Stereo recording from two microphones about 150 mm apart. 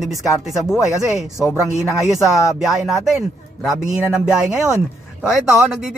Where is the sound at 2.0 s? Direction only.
Centre (ahead or behind).